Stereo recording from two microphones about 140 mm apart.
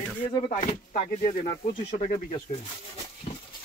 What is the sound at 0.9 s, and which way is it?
Speech, 55° left (ahead or behind).